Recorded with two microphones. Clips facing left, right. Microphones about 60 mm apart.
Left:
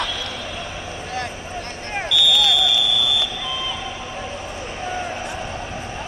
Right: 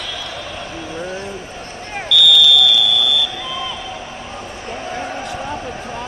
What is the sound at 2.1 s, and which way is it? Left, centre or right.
Smoke detector, left.